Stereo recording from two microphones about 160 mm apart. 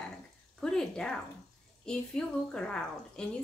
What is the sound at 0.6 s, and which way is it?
A woman's voice, 5° left (ahead or behind).